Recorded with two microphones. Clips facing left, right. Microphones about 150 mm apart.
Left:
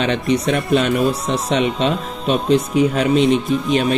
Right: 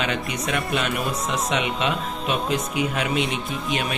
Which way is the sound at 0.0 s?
35° left (ahead or behind).